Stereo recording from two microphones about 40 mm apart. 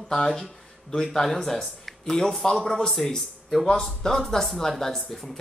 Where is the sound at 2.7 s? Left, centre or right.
Centre.